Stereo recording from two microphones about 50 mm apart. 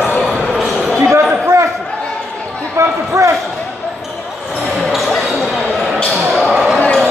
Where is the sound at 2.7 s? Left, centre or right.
Right.